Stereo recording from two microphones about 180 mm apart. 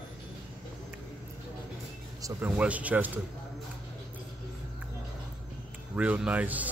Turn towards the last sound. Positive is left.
turn(degrees=-10)  # may be behind; listen again after turning